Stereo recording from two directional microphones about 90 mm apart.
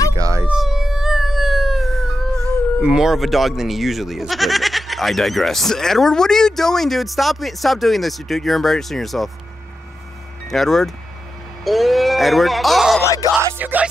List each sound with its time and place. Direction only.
0.1 s a sound: 35° right (ahead or behind)
0.5 s a sound: 5° right (ahead or behind)
2.8 s speech: 10° right (ahead or behind)
10.5 s speech: 5° left (ahead or behind)
13.0 s music: 35° left (ahead or behind)
13.6 s music: 20° right (ahead or behind)